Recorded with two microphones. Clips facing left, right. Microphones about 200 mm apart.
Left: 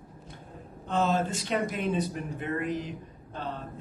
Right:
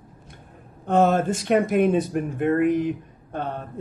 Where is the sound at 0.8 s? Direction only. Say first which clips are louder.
Right 8 dB; 55° right (ahead or behind).